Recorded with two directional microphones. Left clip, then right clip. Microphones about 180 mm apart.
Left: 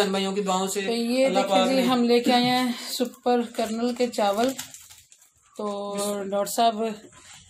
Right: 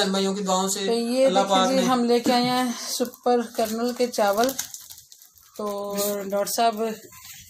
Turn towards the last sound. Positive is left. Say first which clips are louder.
# even
turn(degrees=0)  # may be behind; listen again after turning